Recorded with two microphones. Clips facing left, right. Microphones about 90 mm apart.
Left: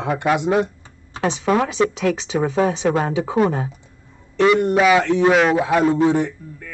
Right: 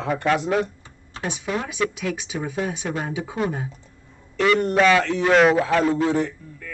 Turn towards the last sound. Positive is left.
turn(degrees=20)  # may be behind; listen again after turning